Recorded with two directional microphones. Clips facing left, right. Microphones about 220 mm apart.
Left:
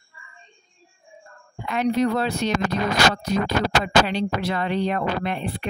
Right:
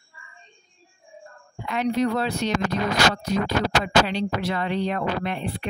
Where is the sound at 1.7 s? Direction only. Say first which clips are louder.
Left 2 dB; 50° left (ahead or behind).